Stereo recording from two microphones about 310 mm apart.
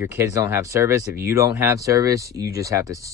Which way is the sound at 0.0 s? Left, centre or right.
Centre.